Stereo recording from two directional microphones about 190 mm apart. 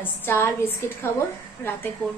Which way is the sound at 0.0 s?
10° left (ahead or behind).